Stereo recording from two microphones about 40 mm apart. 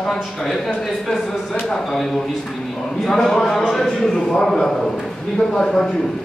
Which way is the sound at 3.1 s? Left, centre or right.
Centre.